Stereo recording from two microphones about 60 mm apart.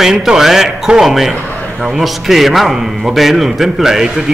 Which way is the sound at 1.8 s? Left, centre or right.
Centre.